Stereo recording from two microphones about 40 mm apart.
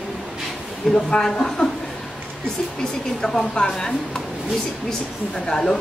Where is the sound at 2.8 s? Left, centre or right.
Centre.